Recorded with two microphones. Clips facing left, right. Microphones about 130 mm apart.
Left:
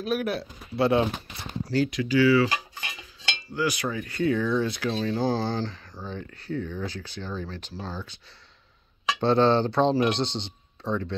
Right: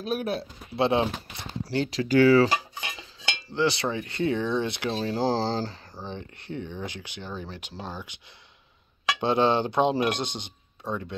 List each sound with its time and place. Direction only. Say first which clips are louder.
0.0 s speech: left 1 dB; 25° right (ahead or behind)
2.0 s speech: right 3 dB; 45° right (ahead or behind)
3.5 s speech: right 2 dB; 30° right (ahead or behind)
6.0 s speech: left 2 dB; 20° right (ahead or behind)
9.2 s speech: left 2 dB; 15° right (ahead or behind)